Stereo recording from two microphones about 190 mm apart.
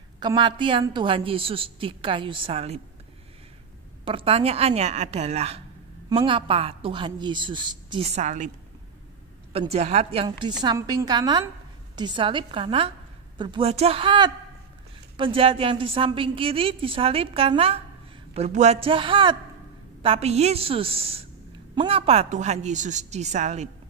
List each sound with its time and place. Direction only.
0.2 s a woman's voice: 25° right (ahead or behind)
4.0 s a woman's voice: 30° right (ahead or behind)
9.5 s a woman's voice: 30° right (ahead or behind)
10.6 s a woman's voice: 20° right (ahead or behind); by 23.7 s 35° right (ahead or behind)